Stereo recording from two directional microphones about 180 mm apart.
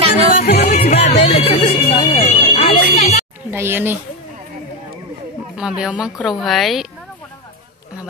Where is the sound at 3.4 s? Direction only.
10° right (ahead or behind).